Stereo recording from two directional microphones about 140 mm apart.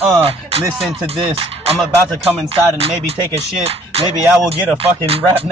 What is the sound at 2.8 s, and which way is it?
Speech, 45° right (ahead or behind).